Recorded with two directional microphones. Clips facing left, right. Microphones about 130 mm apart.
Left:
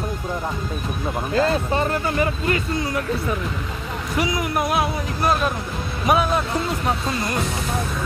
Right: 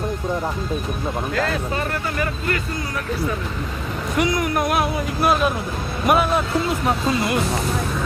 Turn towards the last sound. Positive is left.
turn(degrees=-5)  # may be behind; listen again after turning